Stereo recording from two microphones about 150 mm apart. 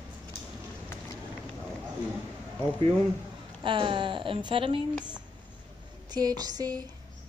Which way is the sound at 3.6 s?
35° right (ahead or behind).